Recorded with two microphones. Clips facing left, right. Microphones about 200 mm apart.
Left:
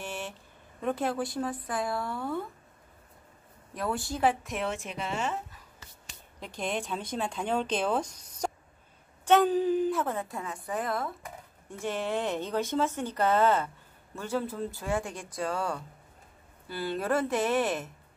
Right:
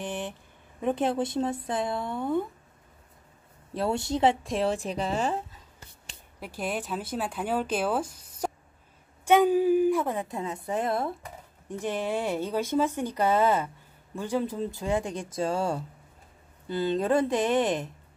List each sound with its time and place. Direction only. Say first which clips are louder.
0.0 s speech: right 4 dB; 15° right (ahead or behind)
3.7 s a woman's voice: right 5 dB; 25° right (ahead or behind)
6.4 s speech: right 1 dB; 5° right (ahead or behind); by 11.1 s 25° right (ahead or behind)
11.8 s speech: right 1 dB; 15° right (ahead or behind)